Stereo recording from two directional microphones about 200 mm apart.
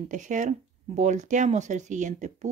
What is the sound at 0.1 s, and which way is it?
Speech, 40° right (ahead or behind).